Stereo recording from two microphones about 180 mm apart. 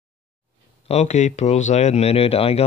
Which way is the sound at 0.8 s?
40° left (ahead or behind).